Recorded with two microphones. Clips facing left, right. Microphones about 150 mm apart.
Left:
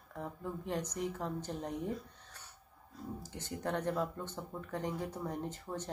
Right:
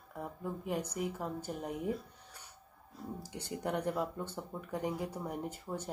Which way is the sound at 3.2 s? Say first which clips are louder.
Right 3 dB; 10° right (ahead or behind).